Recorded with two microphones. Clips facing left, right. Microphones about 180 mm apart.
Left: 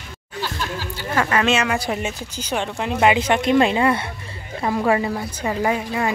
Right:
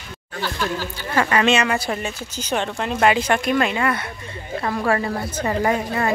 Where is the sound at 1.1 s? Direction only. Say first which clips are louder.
Right 1 dB; centre (ahead or behind); by 4.0 s 25° left (ahead or behind).